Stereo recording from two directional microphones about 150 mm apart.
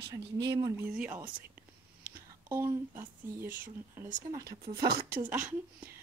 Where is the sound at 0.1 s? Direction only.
25° right (ahead or behind).